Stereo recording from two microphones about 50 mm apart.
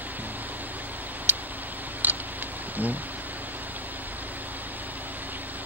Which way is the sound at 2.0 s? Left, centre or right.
Right.